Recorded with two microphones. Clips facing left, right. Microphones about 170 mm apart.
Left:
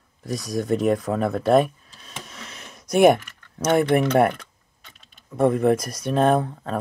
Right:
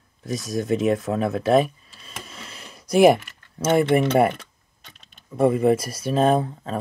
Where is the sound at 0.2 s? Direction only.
Centre (ahead or behind).